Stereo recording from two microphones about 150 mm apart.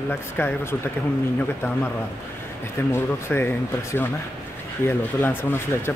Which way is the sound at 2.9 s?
15° left (ahead or behind).